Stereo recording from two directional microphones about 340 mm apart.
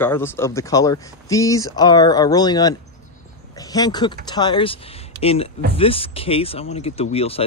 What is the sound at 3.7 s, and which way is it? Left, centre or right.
Speech, centre.